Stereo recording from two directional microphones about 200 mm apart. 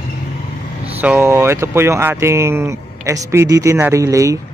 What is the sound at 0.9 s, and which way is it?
Speech, 10° right (ahead or behind).